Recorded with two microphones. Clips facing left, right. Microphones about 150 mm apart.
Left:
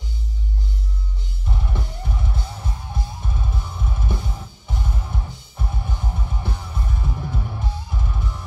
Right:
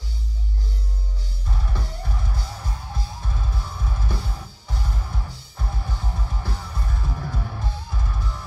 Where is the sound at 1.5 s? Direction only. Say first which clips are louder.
Left 2 dB; 20° left (ahead or behind).